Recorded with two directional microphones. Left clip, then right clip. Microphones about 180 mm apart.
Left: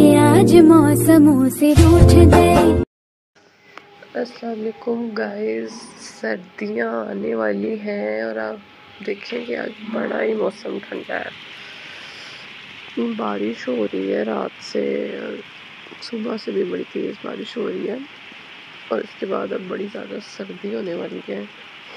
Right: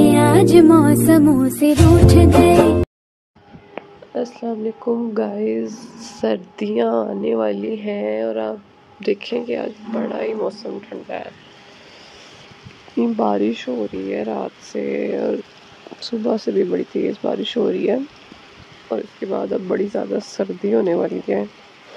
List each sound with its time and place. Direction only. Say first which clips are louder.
0.0 s music: left 1 dB; centre (ahead or behind)
3.7 s speech: right 2 dB; 15° right (ahead or behind)
13.0 s speech: right 5 dB; 25° right (ahead or behind)
13.7 s speech: left 2 dB; 15° right (ahead or behind)
14.8 s speech: right 2 dB; 25° right (ahead or behind)
18.9 s speech: even; 20° right (ahead or behind)
19.7 s speech: right 8 dB; 35° right (ahead or behind)